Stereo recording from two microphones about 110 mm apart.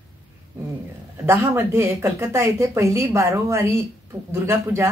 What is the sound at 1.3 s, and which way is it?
A woman's voice, 20° right (ahead or behind).